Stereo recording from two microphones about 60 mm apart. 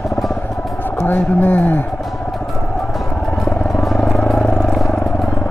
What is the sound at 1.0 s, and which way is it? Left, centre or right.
Speech, left.